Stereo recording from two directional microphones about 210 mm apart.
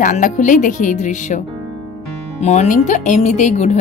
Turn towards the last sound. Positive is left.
turn(degrees=35)  # may be behind; listen again after turning